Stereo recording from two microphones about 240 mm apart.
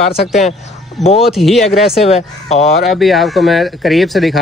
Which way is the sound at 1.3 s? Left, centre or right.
Centre.